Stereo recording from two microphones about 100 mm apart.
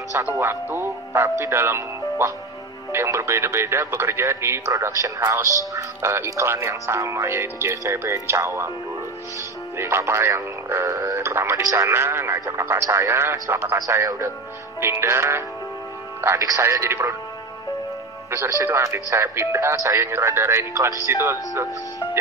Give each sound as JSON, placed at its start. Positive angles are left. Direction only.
{"t": 0.1, "sound": "speech", "side_deg": -30}
{"t": 9.8, "sound": "speech", "side_deg": -25}
{"t": 18.3, "sound": "speech", "side_deg": -25}